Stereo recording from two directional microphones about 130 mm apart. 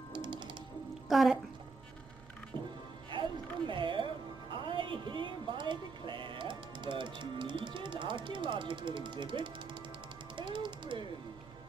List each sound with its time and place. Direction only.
0.1 s music: 35° right (ahead or behind)
1.0 s a woman's voice: centre (ahead or behind)
3.1 s music: 40° right (ahead or behind)
4.6 s speech: 40° right (ahead or behind)
10.3 s a sound: 40° right (ahead or behind)